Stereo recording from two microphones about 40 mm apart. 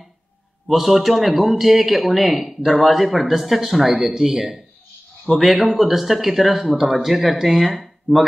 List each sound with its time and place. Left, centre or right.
0.7 s speech: centre